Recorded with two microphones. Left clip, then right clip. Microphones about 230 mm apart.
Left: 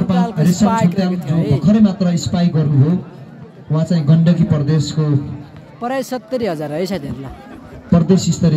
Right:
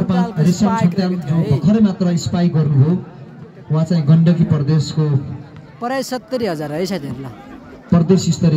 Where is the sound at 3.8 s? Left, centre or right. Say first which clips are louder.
Even; centre.